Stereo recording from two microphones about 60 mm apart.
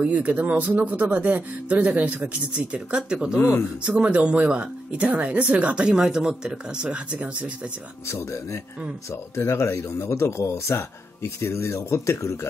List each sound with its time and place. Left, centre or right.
0.0 s speech: right
3.3 s speech: left
3.8 s speech: centre
8.1 s speech: left